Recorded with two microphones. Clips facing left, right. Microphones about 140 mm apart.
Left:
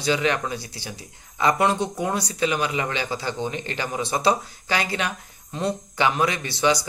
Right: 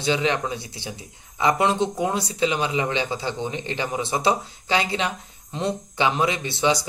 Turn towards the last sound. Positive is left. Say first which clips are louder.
# even
turn(degrees=-25)  # may be behind; listen again after turning